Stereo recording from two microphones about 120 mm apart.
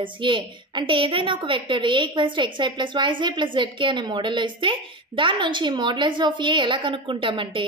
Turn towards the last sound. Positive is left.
turn(degrees=-45)  # may be behind; listen again after turning